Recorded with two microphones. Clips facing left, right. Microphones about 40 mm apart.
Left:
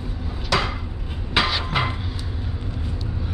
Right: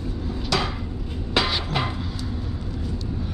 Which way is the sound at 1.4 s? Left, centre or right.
Centre.